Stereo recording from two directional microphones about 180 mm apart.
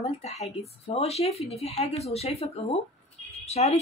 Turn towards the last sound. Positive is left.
turn(degrees=35)  # may be behind; listen again after turning